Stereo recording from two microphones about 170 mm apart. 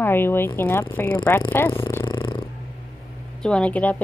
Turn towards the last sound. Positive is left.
turn(degrees=10)  # may be behind; listen again after turning